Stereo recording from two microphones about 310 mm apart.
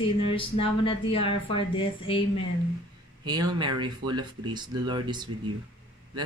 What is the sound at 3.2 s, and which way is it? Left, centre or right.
Speech, centre.